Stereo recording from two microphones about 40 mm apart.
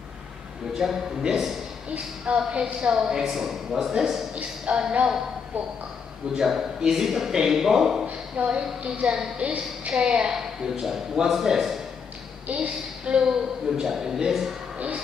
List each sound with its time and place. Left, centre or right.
0.7 s a woman's voice: centre
2.2 s a woman's voice: right
4.7 s speech: right
6.3 s a woman's voice: centre
8.4 s a woman's voice: right
9.4 s a woman's voice: right
10.3 s a woman's voice: centre
12.5 s a woman's voice: right
13.3 s a woman's voice: centre